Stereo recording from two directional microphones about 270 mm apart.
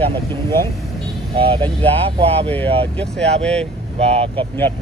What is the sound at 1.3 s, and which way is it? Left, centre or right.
Speech, centre.